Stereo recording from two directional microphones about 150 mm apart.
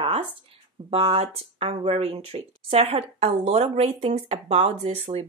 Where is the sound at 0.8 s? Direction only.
40° right (ahead or behind).